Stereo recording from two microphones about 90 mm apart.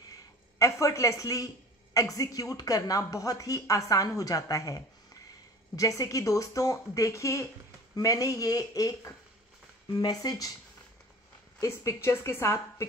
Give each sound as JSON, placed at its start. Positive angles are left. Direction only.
{"t": 0.6, "sound": "speech", "side_deg": 35}
{"t": 11.6, "sound": "speech", "side_deg": 35}